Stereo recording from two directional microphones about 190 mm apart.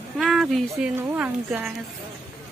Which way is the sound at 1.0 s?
10° right (ahead or behind).